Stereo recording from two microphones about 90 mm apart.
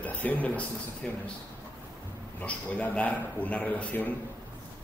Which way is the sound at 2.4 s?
15° left (ahead or behind).